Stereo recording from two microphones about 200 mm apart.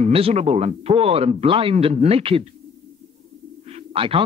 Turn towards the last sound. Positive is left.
turn(degrees=-25)  # may be behind; listen again after turning